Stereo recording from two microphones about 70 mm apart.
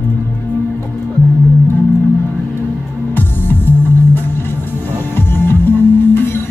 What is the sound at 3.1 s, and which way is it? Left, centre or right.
Music, left.